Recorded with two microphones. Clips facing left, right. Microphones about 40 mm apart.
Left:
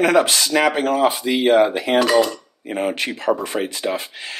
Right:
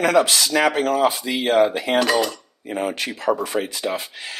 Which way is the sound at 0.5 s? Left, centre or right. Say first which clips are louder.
Left 1 dB; centre.